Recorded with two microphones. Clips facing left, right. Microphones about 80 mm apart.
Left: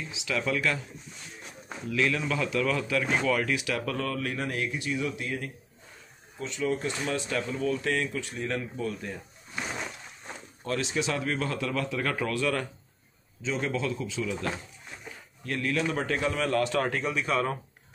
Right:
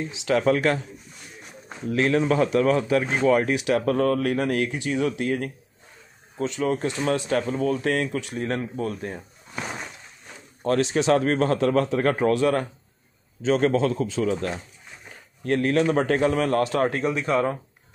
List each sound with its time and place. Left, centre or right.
0.0 s a man's voice: right
1.9 s speech: right
5.1 s a man's voice: right
8.4 s speech: right
10.6 s a man's voice: right
13.4 s a man's voice: right